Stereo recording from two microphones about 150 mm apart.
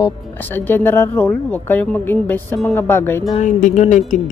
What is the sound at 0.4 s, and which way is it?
Speech, 15° left (ahead or behind).